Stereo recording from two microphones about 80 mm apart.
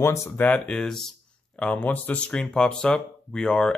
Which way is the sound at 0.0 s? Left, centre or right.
Left.